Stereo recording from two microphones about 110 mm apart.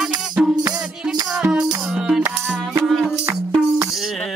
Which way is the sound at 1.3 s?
10° right (ahead or behind).